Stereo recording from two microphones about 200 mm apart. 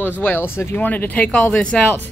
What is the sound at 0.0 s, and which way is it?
Speech, 10° left (ahead or behind).